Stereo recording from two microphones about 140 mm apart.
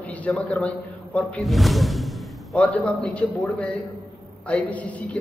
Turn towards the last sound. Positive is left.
turn(degrees=10)  # may be behind; listen again after turning